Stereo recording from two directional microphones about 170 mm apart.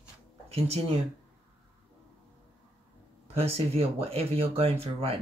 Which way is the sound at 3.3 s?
35° right (ahead or behind).